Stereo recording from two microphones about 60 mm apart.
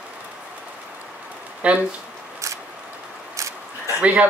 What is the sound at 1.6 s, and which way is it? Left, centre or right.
Speech, right.